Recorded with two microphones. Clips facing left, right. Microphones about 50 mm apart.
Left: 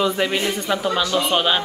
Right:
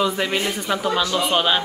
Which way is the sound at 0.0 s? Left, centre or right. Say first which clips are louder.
Left 1 dB; centre.